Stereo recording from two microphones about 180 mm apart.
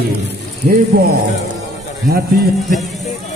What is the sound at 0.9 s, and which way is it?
Speech, 55° right (ahead or behind).